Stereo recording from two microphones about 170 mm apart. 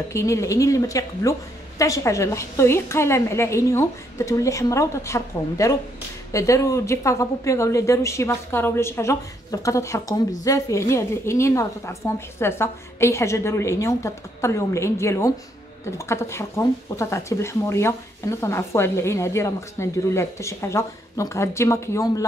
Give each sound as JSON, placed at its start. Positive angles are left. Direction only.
{"t": 0.1, "sound": "speech", "side_deg": 15}